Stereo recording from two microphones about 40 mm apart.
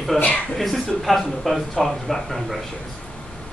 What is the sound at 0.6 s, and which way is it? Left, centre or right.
Speech, centre.